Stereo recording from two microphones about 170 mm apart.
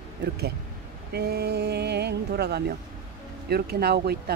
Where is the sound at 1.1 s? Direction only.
70° right (ahead or behind).